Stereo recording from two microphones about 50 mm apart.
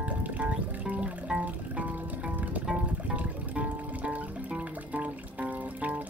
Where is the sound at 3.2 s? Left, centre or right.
Right.